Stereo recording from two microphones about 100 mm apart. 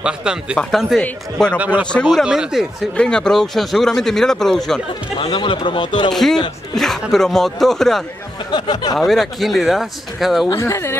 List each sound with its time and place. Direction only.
0.0 s speech: 10° right (ahead or behind)
2.2 s speech: 5° right (ahead or behind)
3.0 s speech: 10° left (ahead or behind)
5.2 s speech: 55° left (ahead or behind)
6.7 s speech: 5° left (ahead or behind)
8.5 s speech: 50° left (ahead or behind)
8.9 s speech: centre (ahead or behind)
10.5 s speech: 30° left (ahead or behind)